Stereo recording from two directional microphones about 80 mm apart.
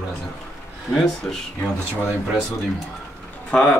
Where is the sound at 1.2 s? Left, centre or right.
Centre.